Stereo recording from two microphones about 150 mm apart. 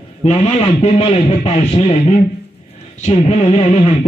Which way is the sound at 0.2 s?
45° left (ahead or behind).